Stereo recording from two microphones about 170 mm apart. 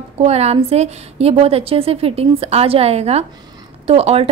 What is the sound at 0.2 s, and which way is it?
Speech, 40° right (ahead or behind).